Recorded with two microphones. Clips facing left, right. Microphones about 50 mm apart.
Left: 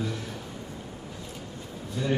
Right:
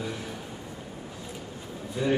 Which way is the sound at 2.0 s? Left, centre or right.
Centre.